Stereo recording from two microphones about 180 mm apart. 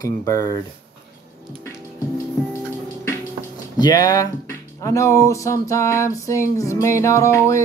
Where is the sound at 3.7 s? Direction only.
20° left (ahead or behind).